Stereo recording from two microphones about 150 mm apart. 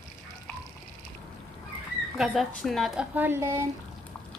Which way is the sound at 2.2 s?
Centre (ahead or behind).